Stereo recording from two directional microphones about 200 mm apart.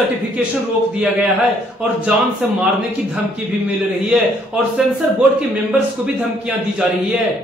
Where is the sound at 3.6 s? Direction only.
10° right (ahead or behind).